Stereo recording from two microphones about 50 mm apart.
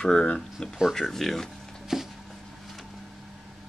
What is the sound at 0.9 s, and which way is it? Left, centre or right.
Speech, centre.